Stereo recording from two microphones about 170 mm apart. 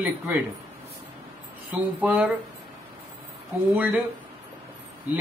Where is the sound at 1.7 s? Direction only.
10° right (ahead or behind).